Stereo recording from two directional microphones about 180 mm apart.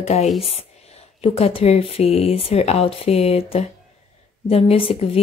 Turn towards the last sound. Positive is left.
turn(degrees=30)  # may be behind; listen again after turning